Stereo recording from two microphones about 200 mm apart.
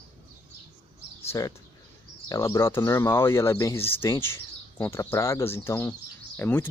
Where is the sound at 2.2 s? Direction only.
15° left (ahead or behind).